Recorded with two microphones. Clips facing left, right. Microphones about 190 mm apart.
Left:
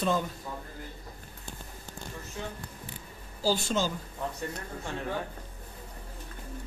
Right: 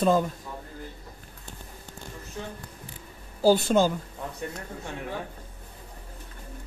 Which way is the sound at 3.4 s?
55° right (ahead or behind).